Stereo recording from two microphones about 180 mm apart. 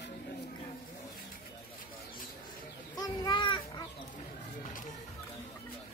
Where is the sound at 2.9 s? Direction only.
20° left (ahead or behind).